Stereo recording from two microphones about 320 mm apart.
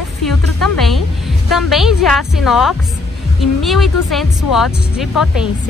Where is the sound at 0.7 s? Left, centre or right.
Centre.